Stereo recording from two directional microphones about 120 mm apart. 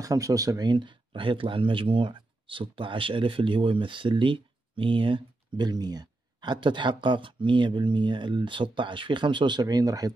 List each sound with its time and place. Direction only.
0.0 s speech: 30° right (ahead or behind)